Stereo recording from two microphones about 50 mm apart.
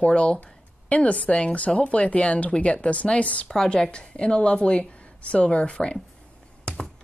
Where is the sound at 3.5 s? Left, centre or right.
Centre.